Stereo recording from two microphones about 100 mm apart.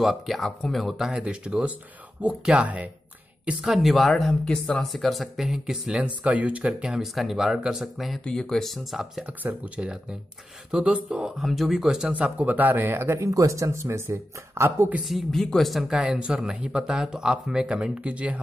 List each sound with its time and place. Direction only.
0.0 s speech: centre (ahead or behind)
9.4 s speech: 15° right (ahead or behind)
11.3 s speech: centre (ahead or behind)
12.1 s speech: 15° right (ahead or behind)
15.0 s speech: centre (ahead or behind)